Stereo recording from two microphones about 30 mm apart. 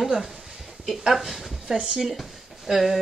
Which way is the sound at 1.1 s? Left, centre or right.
Centre.